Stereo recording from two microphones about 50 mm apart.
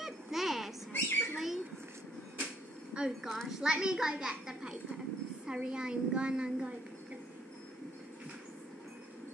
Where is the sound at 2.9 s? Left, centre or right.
Centre.